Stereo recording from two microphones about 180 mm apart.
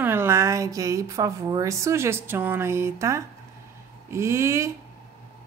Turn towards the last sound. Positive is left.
turn(degrees=-15)  # may be behind; listen again after turning